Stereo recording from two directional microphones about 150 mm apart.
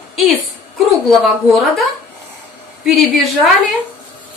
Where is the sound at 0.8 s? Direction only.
Centre (ahead or behind).